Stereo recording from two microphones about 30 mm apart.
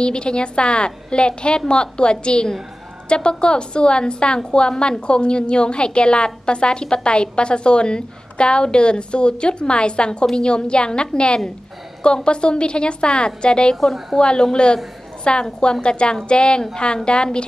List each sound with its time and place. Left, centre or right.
0.0 s a woman's voice: left